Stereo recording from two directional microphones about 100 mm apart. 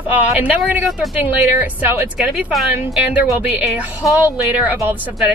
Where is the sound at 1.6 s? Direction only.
20° right (ahead or behind).